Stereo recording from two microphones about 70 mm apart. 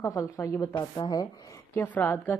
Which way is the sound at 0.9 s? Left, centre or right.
Left.